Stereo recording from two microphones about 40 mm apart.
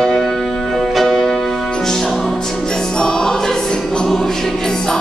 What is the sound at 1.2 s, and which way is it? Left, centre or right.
Music, centre.